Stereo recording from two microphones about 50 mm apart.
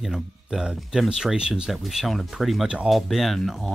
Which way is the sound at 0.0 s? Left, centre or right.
Centre.